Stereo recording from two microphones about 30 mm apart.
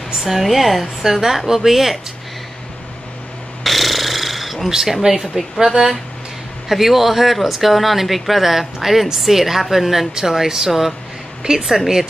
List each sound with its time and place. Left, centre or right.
0.2 s a woman's voice: centre
3.6 s a sound: centre
4.6 s a woman's voice: centre
6.7 s speech: centre
11.5 s speech: right